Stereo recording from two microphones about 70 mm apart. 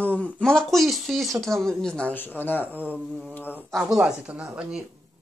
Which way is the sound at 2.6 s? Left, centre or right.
Right.